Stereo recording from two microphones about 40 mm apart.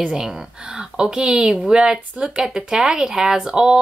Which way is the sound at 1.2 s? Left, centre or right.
Centre.